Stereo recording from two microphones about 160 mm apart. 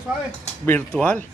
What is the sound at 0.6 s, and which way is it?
Speech, 10° left (ahead or behind).